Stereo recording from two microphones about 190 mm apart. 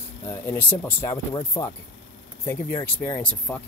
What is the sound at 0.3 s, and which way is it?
Speech, 10° left (ahead or behind).